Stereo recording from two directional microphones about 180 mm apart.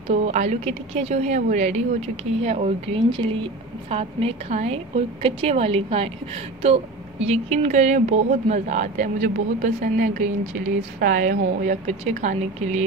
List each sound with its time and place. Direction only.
0.1 s speech: 40° right (ahead or behind)